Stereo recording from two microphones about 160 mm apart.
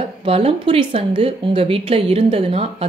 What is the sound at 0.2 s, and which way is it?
A woman's voice, 35° right (ahead or behind).